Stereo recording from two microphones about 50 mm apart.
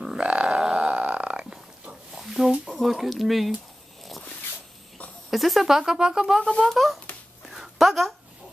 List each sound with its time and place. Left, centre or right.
0.2 s burping: right
1.4 s dog: centre
2.1 s a sound: centre
2.7 s speech: centre
5.3 s speech: centre
6.7 s speech: centre
7.4 s a sound: centre